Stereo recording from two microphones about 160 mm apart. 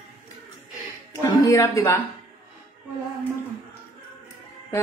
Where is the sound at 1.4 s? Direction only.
20° left (ahead or behind).